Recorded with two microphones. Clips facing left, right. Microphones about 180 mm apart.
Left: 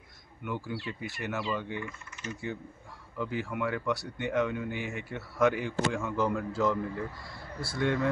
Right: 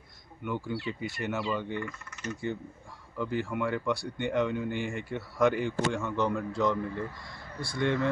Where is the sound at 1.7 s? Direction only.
65° right (ahead or behind).